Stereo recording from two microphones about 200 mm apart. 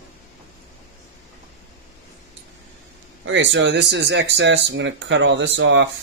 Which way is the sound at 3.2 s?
65° right (ahead or behind).